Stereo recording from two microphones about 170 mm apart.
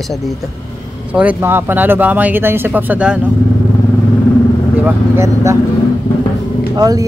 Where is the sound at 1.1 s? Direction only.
10° right (ahead or behind).